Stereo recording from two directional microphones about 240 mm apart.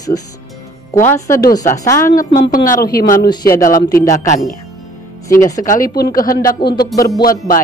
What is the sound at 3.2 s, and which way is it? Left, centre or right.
Speech, centre.